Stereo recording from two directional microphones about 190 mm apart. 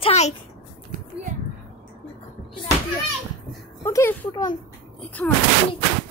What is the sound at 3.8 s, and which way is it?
A woman's voice, 15° left (ahead or behind).